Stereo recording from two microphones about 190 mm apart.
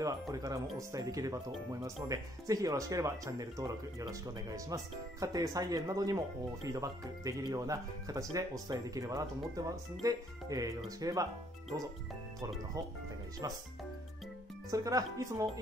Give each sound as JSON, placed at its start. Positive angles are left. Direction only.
{"t": 0.0, "sound": "speech", "side_deg": -20}
{"t": 13.4, "sound": "speech", "side_deg": -20}
{"t": 14.7, "sound": "speech", "side_deg": -20}